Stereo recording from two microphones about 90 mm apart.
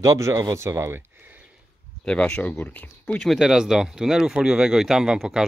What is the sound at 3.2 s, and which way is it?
Speech, centre (ahead or behind).